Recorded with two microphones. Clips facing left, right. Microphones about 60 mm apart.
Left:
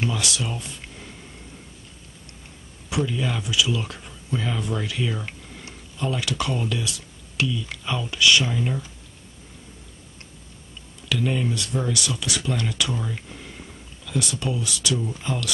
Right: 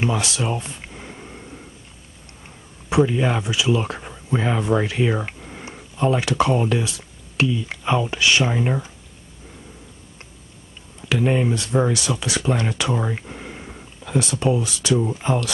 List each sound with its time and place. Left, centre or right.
0.0 s a sound: right
2.9 s speech: right
11.0 s speech: right